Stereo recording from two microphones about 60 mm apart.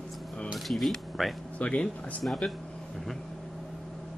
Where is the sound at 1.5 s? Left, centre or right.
Left.